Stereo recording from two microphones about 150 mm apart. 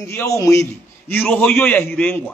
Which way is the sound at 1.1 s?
10° left (ahead or behind).